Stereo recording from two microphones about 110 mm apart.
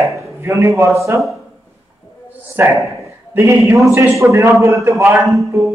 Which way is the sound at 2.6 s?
20° right (ahead or behind).